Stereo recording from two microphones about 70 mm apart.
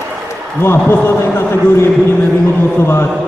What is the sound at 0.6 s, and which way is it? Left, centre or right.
A man's voice, left.